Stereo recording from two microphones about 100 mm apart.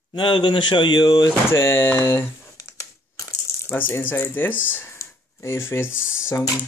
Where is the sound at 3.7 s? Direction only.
20° left (ahead or behind).